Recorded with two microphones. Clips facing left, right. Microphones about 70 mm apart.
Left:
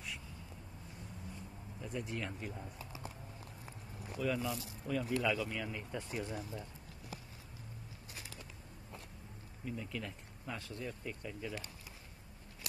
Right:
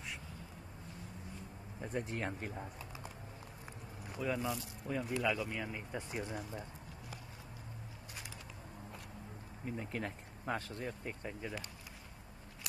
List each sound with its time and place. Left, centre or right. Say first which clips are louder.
1.8 s speech: right 2 dB; right
4.2 s speech: even; centre
9.7 s speech: right 2 dB; right